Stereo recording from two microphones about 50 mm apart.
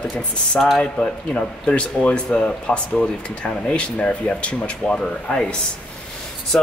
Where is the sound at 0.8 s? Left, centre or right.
Centre.